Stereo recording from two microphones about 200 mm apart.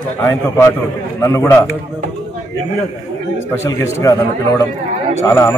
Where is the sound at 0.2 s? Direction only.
15° left (ahead or behind).